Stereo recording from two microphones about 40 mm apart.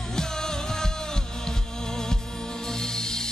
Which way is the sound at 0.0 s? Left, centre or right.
Centre.